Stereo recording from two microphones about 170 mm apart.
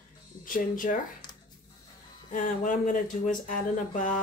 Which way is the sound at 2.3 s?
50° left (ahead or behind).